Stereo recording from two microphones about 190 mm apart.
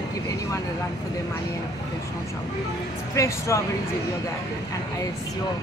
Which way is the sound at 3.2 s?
15° left (ahead or behind).